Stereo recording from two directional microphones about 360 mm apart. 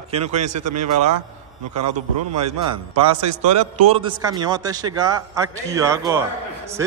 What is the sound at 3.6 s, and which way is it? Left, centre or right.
A man's voice, centre.